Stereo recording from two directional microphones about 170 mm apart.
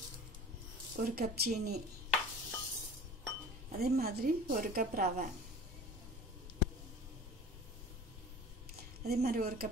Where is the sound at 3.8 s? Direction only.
65° right (ahead or behind).